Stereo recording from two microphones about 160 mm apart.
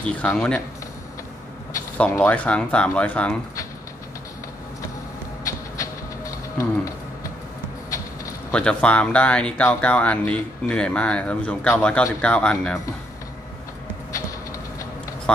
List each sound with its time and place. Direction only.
0.0 s speech: 5° left (ahead or behind)
2.0 s speech: 10° left (ahead or behind)
5.4 s a sound: 20° left (ahead or behind)
8.5 s speech: 5° left (ahead or behind)
15.3 s speech: 5° left (ahead or behind)